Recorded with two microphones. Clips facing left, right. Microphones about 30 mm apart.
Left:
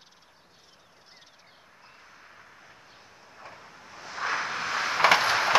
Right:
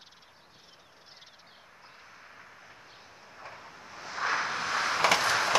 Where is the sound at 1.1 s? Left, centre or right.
Centre.